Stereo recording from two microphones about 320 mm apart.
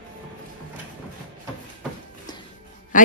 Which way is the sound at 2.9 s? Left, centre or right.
Left.